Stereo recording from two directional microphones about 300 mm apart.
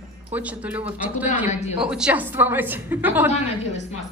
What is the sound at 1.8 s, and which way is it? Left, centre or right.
A woman's voice, centre.